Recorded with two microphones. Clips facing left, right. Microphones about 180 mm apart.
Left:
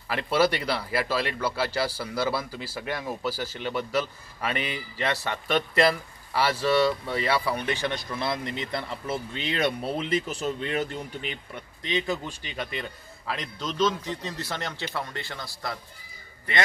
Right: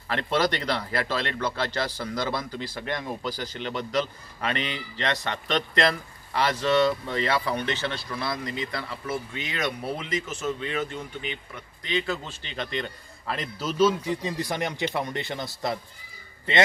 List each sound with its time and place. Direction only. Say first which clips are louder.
0.1 s speech: left 1 dB; 10° left (ahead or behind); by 10.9 s 40° left (ahead or behind)
11.8 s a man's voice: even; 20° left (ahead or behind); by 16.6 s 25° right (ahead or behind)